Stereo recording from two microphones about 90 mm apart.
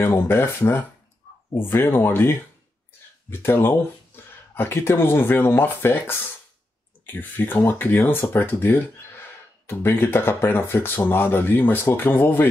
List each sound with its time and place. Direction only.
0.0 s speech: 25° left (ahead or behind)